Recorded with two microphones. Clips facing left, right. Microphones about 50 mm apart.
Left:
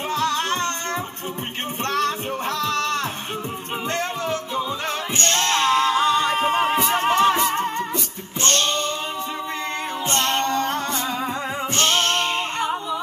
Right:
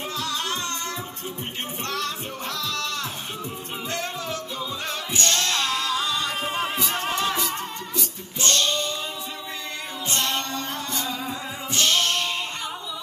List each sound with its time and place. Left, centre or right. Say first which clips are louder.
0.1 s music: left 8 dB; left
1.9 s music: left 8 dB; left
5.1 s singing: left 3 dB; left
8.4 s a sound: left 2 dB; left
10.0 s music: left 5 dB; left